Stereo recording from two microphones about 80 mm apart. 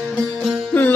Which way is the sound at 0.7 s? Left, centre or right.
Left.